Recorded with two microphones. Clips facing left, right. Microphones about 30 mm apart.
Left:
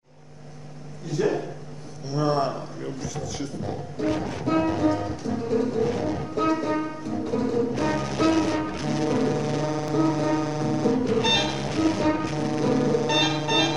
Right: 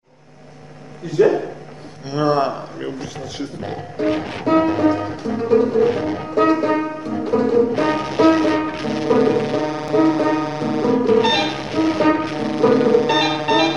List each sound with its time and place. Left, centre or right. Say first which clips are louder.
1.1 s music: right 9 dB; right
2.0 s speech: right 6 dB; right
5.4 s music: right 10 dB; right
5.9 s music: right 6 dB; right
6.2 s music: right 10 dB; right
7.7 s speech: right 6 dB; right
8.1 s music: right 8 dB; right